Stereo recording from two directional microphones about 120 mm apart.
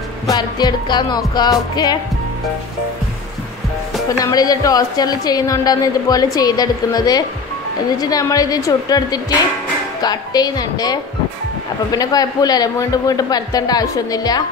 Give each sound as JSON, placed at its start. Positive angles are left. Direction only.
{"t": 0.3, "sound": "a man's voice", "side_deg": 35}
{"t": 4.2, "sound": "a man's voice", "side_deg": 30}